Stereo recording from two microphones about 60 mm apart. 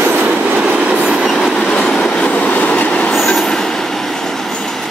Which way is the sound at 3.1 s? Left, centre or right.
Centre.